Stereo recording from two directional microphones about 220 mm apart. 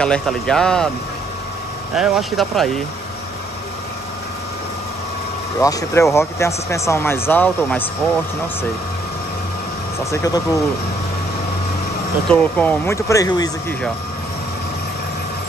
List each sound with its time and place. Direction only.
0.0 s speech: 5° left (ahead or behind)
2.0 s speech: centre (ahead or behind)
5.6 s speech: 15° left (ahead or behind)
9.9 s speech: 15° left (ahead or behind)
12.3 s speech: 5° left (ahead or behind)